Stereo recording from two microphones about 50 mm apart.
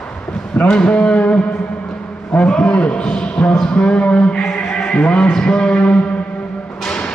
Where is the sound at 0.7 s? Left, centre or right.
Left.